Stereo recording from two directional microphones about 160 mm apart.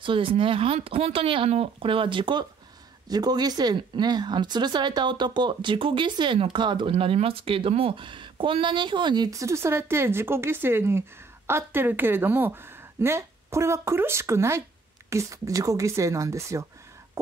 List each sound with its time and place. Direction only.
0.0 s speech: 35° right (ahead or behind)